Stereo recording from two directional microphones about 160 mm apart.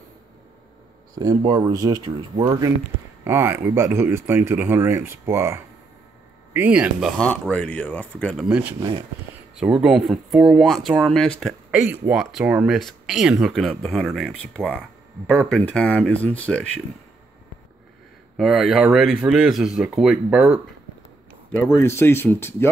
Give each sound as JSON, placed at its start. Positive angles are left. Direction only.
{"t": 1.1, "sound": "speech", "side_deg": -25}
{"t": 8.4, "sound": "speech", "side_deg": -5}
{"t": 8.7, "sound": "speech", "side_deg": -30}
{"t": 9.6, "sound": "speech", "side_deg": -5}
{"t": 18.4, "sound": "speech", "side_deg": 0}
{"t": 21.5, "sound": "speech", "side_deg": 10}